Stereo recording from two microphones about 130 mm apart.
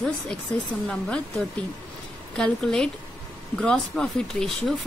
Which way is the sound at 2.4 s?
5° left (ahead or behind).